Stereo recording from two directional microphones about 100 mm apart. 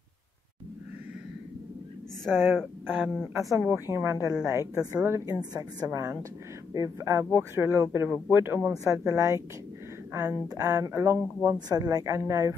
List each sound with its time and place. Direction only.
2.3 s speech: 20° right (ahead or behind)
3.8 s a woman's voice: 25° right (ahead or behind)
5.5 s a woman's voice: 45° right (ahead or behind)
5.9 s speech: 30° right (ahead or behind)
9.0 s a woman's voice: 35° right (ahead or behind)
11.5 s a woman's voice: 40° right (ahead or behind)